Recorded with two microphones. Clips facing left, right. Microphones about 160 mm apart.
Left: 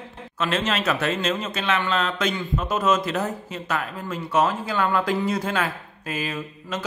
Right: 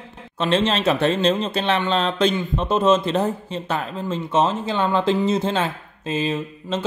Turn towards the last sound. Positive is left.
turn(degrees=-25)  # may be behind; listen again after turning